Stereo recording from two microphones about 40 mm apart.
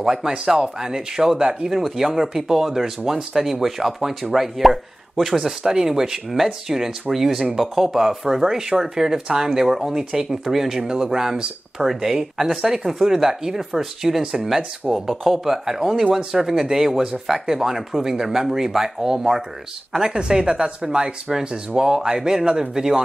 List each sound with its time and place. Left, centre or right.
0.0 s speech: centre
15.2 s speech: centre
15.5 s speech: centre